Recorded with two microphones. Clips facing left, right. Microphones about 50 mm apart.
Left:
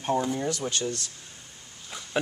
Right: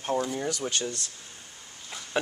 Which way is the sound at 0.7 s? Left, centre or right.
Right.